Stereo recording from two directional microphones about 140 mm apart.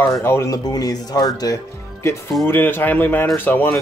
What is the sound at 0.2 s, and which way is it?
Speech, 20° left (ahead or behind).